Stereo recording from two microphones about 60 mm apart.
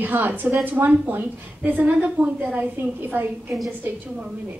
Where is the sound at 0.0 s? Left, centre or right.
Right.